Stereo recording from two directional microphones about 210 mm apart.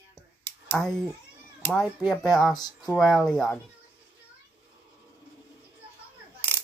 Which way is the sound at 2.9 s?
Centre (ahead or behind).